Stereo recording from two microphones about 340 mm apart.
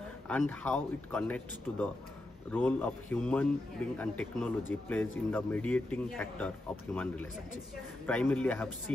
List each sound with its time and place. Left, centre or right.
0.3 s speech: centre